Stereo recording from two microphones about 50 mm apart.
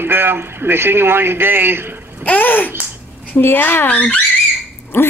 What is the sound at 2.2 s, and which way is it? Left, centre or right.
Babbling, left.